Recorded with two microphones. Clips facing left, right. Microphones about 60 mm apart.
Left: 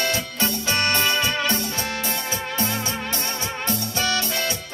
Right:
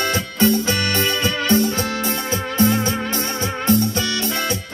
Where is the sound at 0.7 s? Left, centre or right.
Left.